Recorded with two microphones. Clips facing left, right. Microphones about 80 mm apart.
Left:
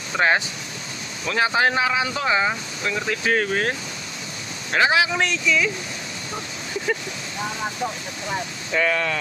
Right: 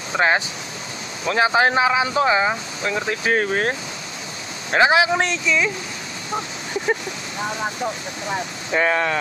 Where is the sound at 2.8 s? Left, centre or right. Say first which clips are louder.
Right 1 dB; right.